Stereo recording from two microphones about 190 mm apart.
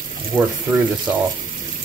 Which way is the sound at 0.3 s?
15° right (ahead or behind).